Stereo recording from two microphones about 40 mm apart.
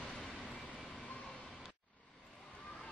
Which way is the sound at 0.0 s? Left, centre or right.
Centre.